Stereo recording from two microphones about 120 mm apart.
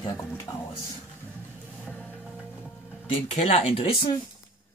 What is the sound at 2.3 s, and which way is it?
Music, 5° right (ahead or behind).